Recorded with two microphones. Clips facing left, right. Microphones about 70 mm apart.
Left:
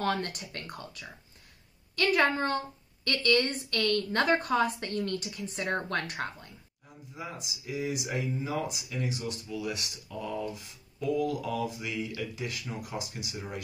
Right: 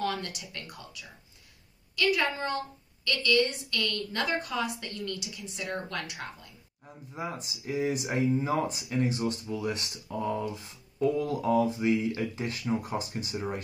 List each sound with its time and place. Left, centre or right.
0.0 s a woman's voice: left
7.2 s speech: right